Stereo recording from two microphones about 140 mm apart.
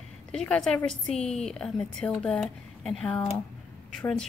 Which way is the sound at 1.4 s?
5° left (ahead or behind).